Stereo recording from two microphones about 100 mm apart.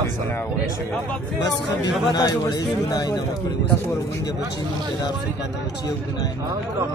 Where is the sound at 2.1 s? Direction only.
45° left (ahead or behind).